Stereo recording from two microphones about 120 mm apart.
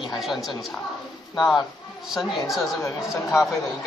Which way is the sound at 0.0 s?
Centre (ahead or behind).